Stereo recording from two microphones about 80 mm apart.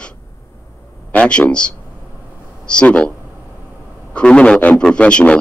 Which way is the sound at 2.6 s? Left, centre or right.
Centre.